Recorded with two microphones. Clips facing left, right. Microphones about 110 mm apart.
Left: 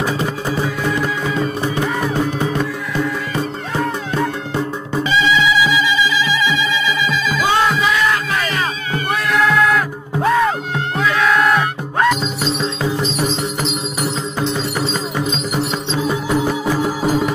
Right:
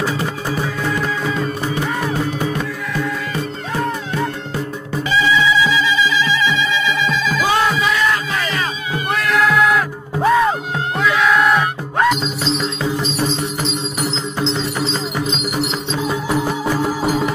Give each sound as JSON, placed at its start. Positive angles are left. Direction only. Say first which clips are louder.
{"t": 5.3, "sound": "music", "louder": "right 1 dB", "side_deg": 15}
{"t": 9.1, "sound": "music", "louder": "even", "side_deg": 0}
{"t": 13.4, "sound": "music", "louder": "left 1 dB", "side_deg": -30}